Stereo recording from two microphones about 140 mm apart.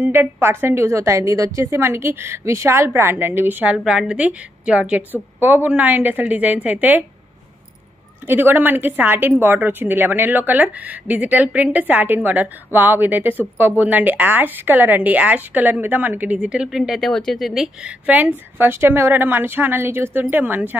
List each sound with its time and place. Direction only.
0.0 s speech: 15° right (ahead or behind)
8.3 s speech: 15° right (ahead or behind)